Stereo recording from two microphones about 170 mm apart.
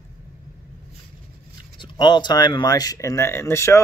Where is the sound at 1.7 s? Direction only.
25° left (ahead or behind).